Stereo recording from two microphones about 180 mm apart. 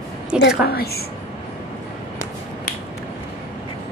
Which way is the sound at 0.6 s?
60° left (ahead or behind).